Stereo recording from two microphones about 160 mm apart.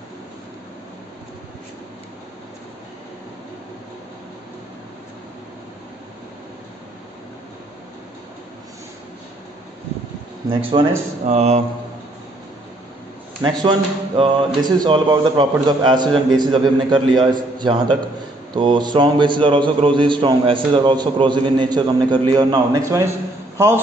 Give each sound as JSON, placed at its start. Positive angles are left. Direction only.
{"t": 10.7, "sound": "speech", "side_deg": -30}
{"t": 11.2, "sound": "speech", "side_deg": -40}
{"t": 13.4, "sound": "a man's voice", "side_deg": -30}